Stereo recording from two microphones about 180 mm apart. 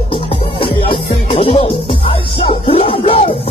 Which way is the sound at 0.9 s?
30° left (ahead or behind).